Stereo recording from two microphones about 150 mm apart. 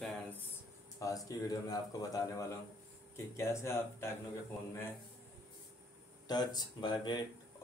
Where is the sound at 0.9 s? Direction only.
25° left (ahead or behind).